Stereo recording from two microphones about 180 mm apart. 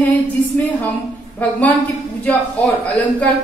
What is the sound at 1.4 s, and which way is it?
Speech, 10° left (ahead or behind).